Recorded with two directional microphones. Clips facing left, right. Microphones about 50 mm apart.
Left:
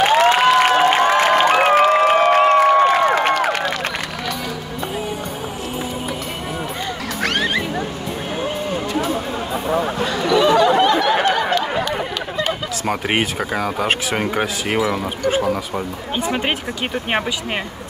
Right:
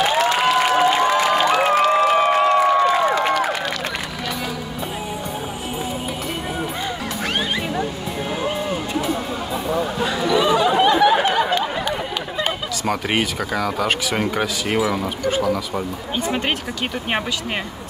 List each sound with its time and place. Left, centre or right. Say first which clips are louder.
0.0 s a sound: left 4 dB; left
7.2 s music: left 4 dB; left
10.0 s a sound: left 2 dB; centre
12.9 s speech: left 2 dB; left
14.8 s speech: left 1 dB; centre
15.3 s speech: left 1 dB; left